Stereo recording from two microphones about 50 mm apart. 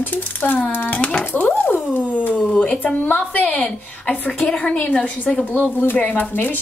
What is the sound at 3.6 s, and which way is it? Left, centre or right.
A woman's voice, left.